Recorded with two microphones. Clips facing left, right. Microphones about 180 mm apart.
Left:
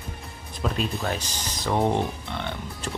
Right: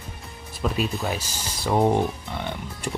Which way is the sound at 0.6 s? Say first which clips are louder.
Right 2 dB; 5° right (ahead or behind).